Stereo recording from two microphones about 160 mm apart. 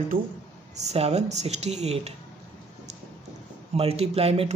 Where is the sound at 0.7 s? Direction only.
40° right (ahead or behind).